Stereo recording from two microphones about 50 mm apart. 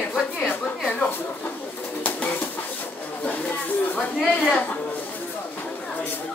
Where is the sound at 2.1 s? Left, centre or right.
Left.